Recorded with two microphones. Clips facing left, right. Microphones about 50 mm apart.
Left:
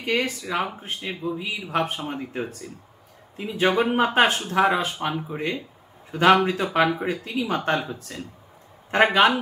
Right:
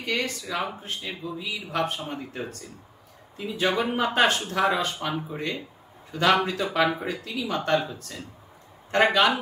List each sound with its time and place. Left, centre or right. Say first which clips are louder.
0.0 s speech: left 4 dB; left